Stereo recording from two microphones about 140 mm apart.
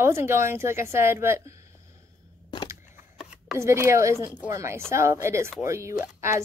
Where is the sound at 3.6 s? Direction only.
20° right (ahead or behind).